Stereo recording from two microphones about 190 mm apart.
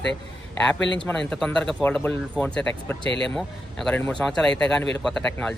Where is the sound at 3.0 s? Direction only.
25° right (ahead or behind).